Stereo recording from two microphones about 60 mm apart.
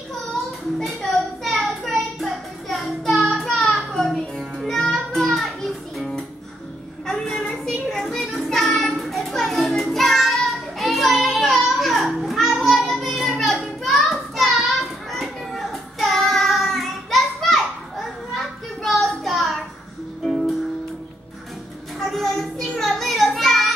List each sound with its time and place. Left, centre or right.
0.3 s child singing: centre
3.5 s a sound: centre
4.7 s music: centre
7.1 s child singing: centre
10.8 s children playing: centre
18.8 s child singing: centre
20.2 s music: centre
22.0 s child singing: centre